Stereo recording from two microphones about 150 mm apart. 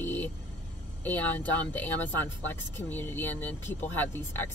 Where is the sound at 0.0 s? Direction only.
15° left (ahead or behind).